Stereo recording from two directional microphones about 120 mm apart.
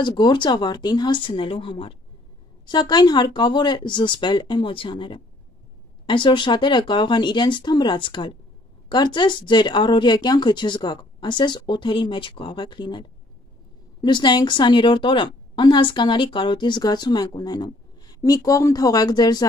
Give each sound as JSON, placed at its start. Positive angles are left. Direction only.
{"t": 0.0, "sound": "a woman's voice", "side_deg": 40}
{"t": 14.0, "sound": "a woman's voice", "side_deg": 40}